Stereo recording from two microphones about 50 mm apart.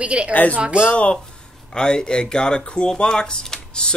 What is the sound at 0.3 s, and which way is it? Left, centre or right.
Speech, left.